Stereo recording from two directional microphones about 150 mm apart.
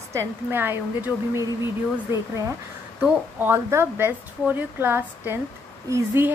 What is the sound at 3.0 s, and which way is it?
A woman's voice, 15° right (ahead or behind).